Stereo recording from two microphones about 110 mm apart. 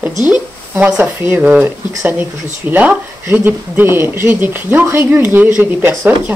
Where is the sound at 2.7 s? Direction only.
15° right (ahead or behind).